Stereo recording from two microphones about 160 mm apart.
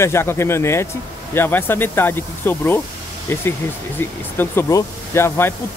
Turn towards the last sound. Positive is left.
turn(degrees=15)  # may be behind; listen again after turning